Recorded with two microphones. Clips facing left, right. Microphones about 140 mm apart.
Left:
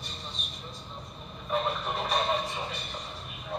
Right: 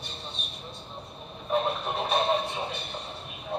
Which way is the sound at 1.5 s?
25° right (ahead or behind).